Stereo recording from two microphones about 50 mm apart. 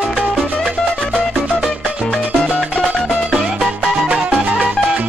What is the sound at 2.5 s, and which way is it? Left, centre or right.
Music, right.